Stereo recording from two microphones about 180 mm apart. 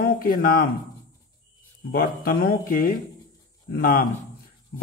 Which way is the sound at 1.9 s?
55° left (ahead or behind).